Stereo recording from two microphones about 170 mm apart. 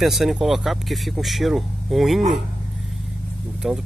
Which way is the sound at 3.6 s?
Centre (ahead or behind).